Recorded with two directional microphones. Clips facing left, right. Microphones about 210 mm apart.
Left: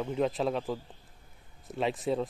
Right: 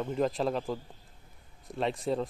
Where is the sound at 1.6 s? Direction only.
Centre (ahead or behind).